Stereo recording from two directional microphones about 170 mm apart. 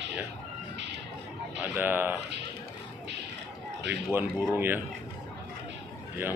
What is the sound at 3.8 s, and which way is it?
Speech, 10° right (ahead or behind).